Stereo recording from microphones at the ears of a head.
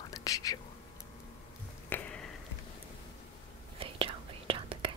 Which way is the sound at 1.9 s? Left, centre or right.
Left.